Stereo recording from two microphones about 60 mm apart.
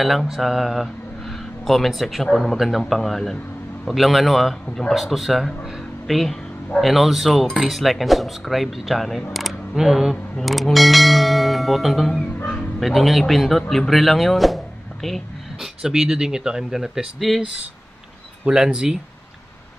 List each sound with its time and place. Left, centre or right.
0.0 s a man's voice: centre
15.8 s speech: centre
18.4 s speech: centre